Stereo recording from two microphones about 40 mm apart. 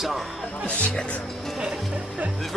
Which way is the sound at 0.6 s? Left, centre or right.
Left.